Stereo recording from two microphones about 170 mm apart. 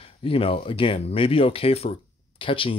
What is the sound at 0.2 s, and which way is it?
Speech, 35° left (ahead or behind).